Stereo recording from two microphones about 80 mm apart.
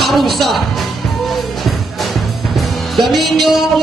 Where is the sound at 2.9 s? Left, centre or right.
Centre.